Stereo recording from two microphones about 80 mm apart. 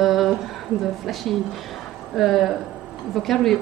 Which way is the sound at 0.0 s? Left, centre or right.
Centre.